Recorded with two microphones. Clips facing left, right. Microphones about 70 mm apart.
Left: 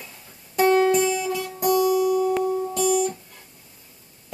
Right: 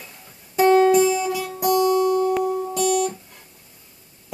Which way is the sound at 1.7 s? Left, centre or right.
Right.